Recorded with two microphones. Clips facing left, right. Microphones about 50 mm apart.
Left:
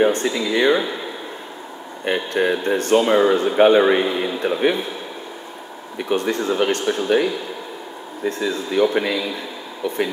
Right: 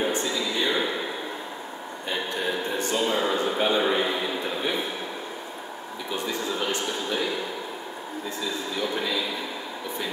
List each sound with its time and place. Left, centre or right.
0.0 s speech: left
2.0 s speech: left
5.9 s speech: left
8.3 s speech: left